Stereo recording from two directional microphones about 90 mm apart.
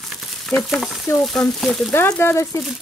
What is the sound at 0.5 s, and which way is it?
Speech, 25° left (ahead or behind).